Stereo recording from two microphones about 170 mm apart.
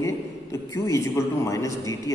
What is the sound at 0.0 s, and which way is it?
A man's voice, 20° left (ahead or behind).